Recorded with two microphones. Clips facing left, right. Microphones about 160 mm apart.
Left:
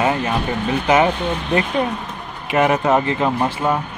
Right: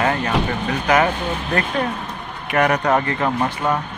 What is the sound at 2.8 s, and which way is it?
Speech, 5° left (ahead or behind).